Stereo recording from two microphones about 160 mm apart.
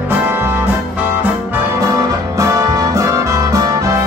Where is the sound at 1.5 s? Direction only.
20° right (ahead or behind).